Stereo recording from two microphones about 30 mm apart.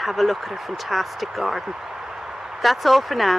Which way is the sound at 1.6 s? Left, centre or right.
Centre.